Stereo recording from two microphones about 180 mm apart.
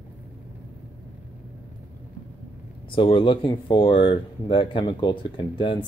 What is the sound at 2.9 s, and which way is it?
Speech, 30° left (ahead or behind).